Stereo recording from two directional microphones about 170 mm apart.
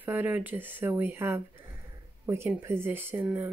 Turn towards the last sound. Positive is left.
turn(degrees=-15)  # may be behind; listen again after turning